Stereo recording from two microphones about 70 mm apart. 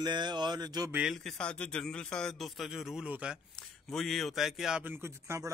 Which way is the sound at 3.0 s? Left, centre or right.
Centre.